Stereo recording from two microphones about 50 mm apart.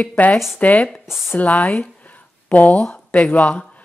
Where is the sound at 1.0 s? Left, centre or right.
Centre.